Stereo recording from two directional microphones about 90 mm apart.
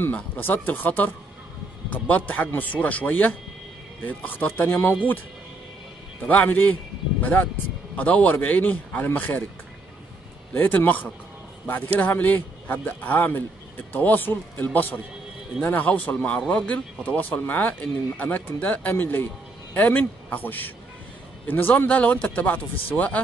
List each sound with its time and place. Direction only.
0.0 s speech: 20° left (ahead or behind)
6.2 s speech: 15° left (ahead or behind)
10.5 s speech: 20° left (ahead or behind)